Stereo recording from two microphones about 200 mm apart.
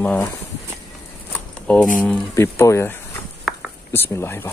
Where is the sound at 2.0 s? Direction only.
15° left (ahead or behind).